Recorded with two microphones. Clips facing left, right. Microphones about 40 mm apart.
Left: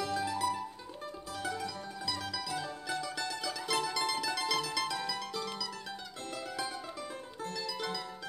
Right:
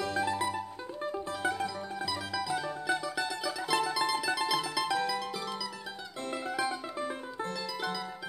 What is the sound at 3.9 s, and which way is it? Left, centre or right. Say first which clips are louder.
Mandolin: right 3 dB; centre.